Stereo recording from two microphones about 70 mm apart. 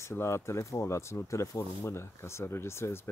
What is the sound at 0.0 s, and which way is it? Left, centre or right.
Speech, left.